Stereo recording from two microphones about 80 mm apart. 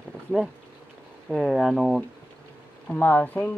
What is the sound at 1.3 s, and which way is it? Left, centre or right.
Speech, centre.